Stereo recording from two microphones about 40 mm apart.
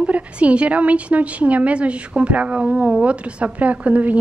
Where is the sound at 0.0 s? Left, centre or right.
Right.